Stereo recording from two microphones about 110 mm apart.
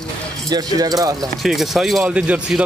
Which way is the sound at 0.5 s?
35° right (ahead or behind).